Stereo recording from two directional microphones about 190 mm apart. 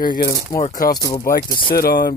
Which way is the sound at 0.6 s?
40° left (ahead or behind).